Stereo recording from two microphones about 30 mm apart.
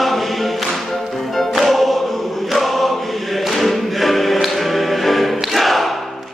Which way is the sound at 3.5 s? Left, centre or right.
Centre.